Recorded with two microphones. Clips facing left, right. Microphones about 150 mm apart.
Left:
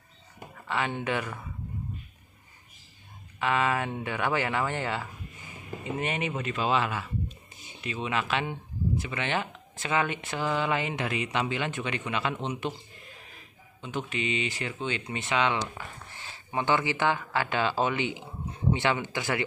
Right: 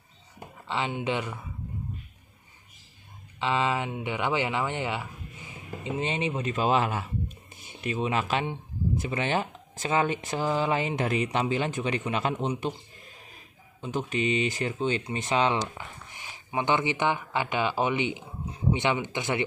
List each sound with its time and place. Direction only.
0.7 s speech: 20° right (ahead or behind)
3.3 s speech: 25° right (ahead or behind)
13.7 s speech: 40° right (ahead or behind)
16.1 s speech: 15° right (ahead or behind)